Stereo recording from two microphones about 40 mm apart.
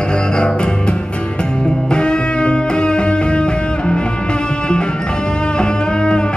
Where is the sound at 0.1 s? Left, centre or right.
Left.